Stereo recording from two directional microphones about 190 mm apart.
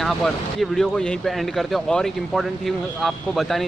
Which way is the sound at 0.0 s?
Centre (ahead or behind).